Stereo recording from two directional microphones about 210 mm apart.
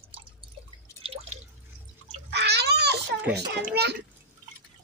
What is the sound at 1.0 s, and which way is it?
Drip, 35° right (ahead or behind).